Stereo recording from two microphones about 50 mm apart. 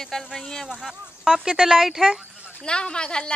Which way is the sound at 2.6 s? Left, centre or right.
Centre.